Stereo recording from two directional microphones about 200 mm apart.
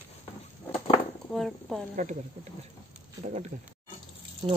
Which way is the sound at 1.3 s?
Centre (ahead or behind).